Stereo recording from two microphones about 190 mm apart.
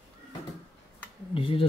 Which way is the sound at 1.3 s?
30° left (ahead or behind).